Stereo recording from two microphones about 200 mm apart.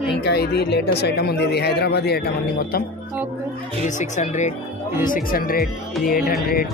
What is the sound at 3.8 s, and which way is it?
Speech, 40° left (ahead or behind).